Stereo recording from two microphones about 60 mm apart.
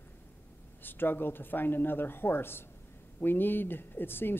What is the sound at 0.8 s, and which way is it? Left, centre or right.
Speech, left.